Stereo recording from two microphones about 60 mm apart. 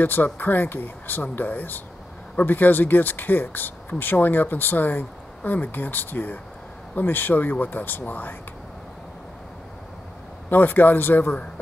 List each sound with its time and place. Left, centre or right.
0.0 s speech: left
10.5 s speech: left